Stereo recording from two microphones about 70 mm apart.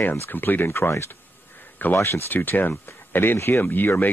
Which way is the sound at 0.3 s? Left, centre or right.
Left.